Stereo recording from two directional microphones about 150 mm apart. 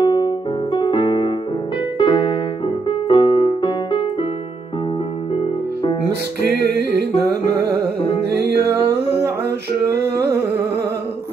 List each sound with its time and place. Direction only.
0.0 s music: 30° left (ahead or behind)
0.7 s piano: 35° left (ahead or behind)
2.0 s music: 35° left (ahead or behind)
2.9 s keyboard: 35° left (ahead or behind)
6.5 s music: 90° right
8.6 s music: 15° right (ahead or behind)